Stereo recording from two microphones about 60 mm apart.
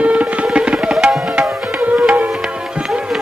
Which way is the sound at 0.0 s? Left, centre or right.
Right.